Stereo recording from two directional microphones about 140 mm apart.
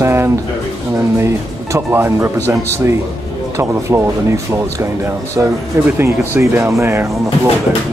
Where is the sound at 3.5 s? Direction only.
20° right (ahead or behind).